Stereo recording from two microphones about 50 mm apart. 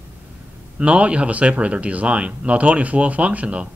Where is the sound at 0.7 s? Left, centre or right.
Right.